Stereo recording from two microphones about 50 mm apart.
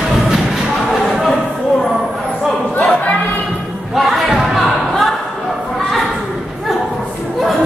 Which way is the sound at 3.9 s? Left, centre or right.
Centre.